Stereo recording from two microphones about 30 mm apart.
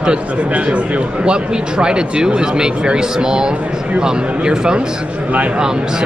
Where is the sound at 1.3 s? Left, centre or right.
Right.